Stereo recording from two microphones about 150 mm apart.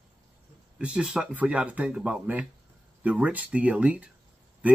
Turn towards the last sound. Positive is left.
turn(degrees=-10)  # may be behind; listen again after turning